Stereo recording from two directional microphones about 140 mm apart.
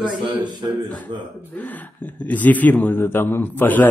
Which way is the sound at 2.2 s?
10° left (ahead or behind).